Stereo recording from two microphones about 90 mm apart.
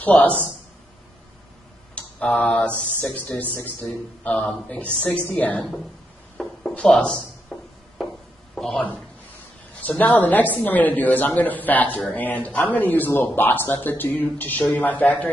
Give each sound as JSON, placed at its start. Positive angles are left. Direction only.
{"t": 0.0, "sound": "a woman's voice", "side_deg": 20}
{"t": 2.0, "sound": "a woman's voice", "side_deg": 15}
{"t": 6.9, "sound": "speech", "side_deg": 5}
{"t": 8.5, "sound": "a man's voice", "side_deg": 5}
{"t": 9.8, "sound": "speech", "side_deg": 15}